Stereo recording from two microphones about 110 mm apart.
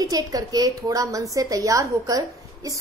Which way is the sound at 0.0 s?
35° right (ahead or behind).